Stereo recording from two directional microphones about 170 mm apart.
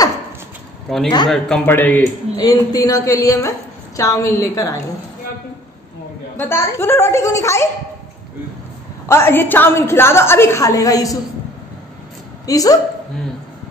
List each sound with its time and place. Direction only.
0.9 s a man's voice: centre (ahead or behind)
2.4 s a woman's voice: 20° left (ahead or behind)
6.3 s a woman's voice: 15° left (ahead or behind)
9.0 s a woman's voice: 15° left (ahead or behind)
12.4 s a woman's voice: 20° left (ahead or behind)